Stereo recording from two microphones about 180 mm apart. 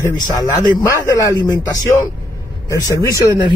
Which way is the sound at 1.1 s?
15° left (ahead or behind).